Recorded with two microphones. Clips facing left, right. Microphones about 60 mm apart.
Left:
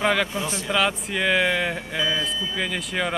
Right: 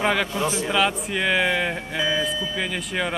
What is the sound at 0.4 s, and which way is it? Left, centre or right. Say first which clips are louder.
Speech: right 4 dB; right.